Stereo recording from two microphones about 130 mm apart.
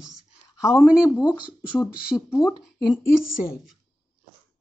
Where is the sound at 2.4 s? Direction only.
5° right (ahead or behind).